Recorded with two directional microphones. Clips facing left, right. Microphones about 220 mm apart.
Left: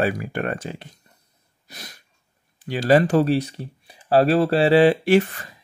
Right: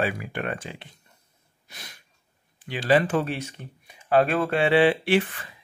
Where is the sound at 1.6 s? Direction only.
40° left (ahead or behind).